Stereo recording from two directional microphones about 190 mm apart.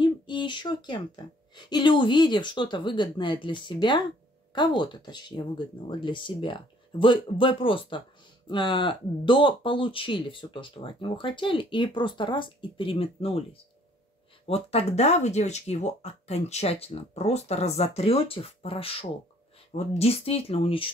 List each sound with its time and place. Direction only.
0.0 s speech: 25° left (ahead or behind)